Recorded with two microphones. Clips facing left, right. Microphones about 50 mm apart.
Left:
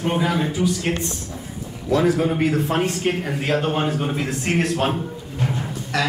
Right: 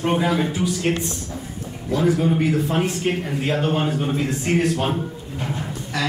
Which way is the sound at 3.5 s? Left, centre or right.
Centre.